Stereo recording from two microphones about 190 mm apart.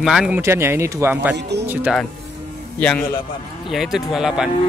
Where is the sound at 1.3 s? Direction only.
65° right (ahead or behind).